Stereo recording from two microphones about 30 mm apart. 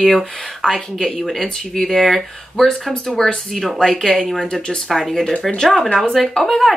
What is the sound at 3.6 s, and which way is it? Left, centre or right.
Speech, centre.